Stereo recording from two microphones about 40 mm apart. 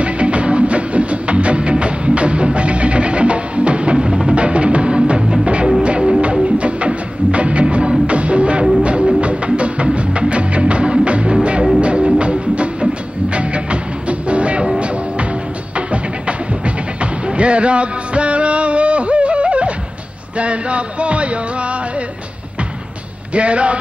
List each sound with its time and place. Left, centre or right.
0.0 s music: right
15.7 s music: right
23.3 s speech: right